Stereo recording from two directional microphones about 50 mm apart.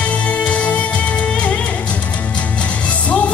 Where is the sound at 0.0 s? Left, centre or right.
Left.